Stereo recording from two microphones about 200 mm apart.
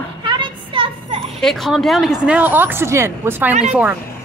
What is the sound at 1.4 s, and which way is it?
Speech, centre (ahead or behind).